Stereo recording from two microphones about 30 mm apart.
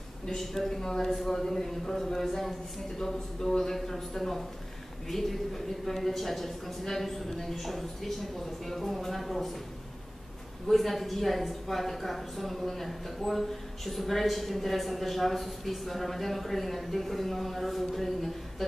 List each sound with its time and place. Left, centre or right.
0.4 s a woman's voice: centre
10.7 s a woman's voice: centre